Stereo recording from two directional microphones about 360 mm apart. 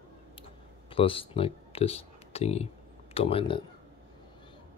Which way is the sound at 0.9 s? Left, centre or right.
Centre.